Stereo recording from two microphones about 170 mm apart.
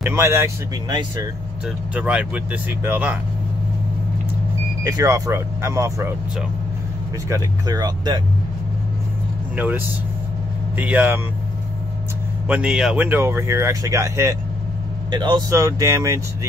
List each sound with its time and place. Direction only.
0.0 s speech: 15° right (ahead or behind)
2.0 s speech: 5° right (ahead or behind)
4.8 s speech: 20° right (ahead or behind)
7.2 s speech: 20° right (ahead or behind)
9.6 s speech: 10° right (ahead or behind)
12.4 s speech: 5° right (ahead or behind)